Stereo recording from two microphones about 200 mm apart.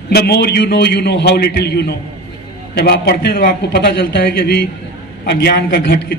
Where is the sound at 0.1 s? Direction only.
55° left (ahead or behind).